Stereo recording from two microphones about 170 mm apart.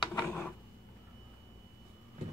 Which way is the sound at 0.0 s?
20° left (ahead or behind).